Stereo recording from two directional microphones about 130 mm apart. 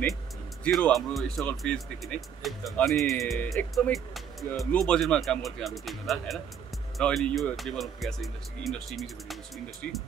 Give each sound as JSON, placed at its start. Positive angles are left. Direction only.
{"t": 0.7, "sound": "speech", "side_deg": 5}